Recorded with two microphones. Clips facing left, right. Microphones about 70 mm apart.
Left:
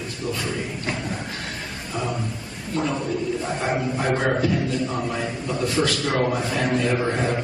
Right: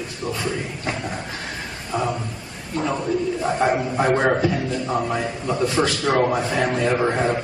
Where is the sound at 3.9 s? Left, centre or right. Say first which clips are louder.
Right 4 dB; right.